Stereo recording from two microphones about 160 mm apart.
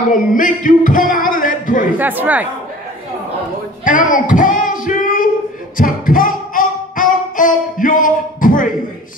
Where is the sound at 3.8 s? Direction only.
55° left (ahead or behind).